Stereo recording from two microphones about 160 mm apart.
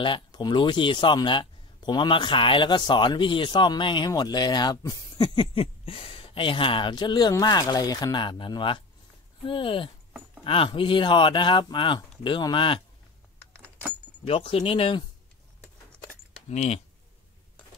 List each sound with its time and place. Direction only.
0.0 s speech: 30° left (ahead or behind)
14.2 s speech: 35° left (ahead or behind)
16.4 s speech: 45° left (ahead or behind)